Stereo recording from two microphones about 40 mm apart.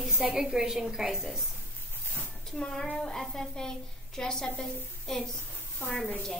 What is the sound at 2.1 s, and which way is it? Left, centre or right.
A woman's voice, centre.